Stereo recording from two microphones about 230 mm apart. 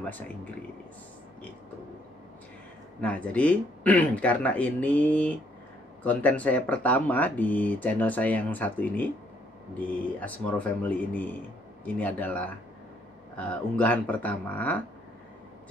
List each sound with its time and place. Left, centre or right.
0.0 s speech: centre
3.0 s speech: centre